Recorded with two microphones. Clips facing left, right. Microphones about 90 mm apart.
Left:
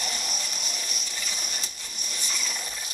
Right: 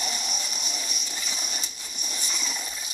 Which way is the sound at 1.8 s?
15° right (ahead or behind).